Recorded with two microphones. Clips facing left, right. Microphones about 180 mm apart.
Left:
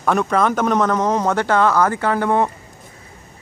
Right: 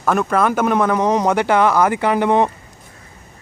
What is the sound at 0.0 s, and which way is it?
Speech, 5° right (ahead or behind).